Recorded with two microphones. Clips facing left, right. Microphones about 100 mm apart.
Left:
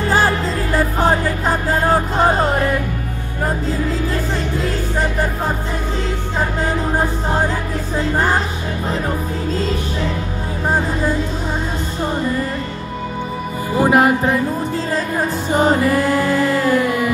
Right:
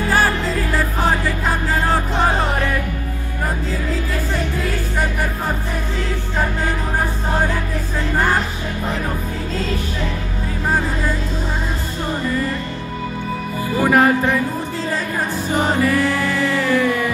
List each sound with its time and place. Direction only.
1.9 s music: 35° left (ahead or behind)
13.7 s music: 20° left (ahead or behind)
15.5 s music: 35° left (ahead or behind)